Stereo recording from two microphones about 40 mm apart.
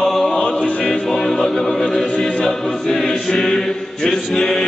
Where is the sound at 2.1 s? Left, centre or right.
Left.